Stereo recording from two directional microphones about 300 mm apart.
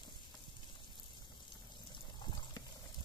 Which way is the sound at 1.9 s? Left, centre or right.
Centre.